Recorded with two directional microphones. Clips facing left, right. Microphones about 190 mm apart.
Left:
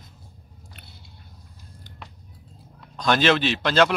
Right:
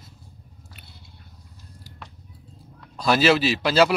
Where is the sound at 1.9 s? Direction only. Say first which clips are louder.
Right 1 dB; 5° right (ahead or behind).